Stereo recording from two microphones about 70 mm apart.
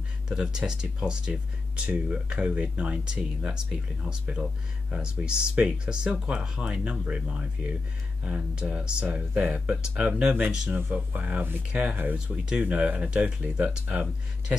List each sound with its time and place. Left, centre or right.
0.3 s speech: centre